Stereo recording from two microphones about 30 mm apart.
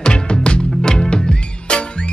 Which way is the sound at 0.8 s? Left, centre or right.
Left.